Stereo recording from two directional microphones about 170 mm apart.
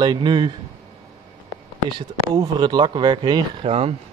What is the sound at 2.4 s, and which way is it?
A man's voice, 25° right (ahead or behind).